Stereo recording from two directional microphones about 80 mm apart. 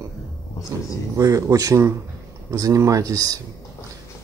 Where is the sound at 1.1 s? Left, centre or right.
Right.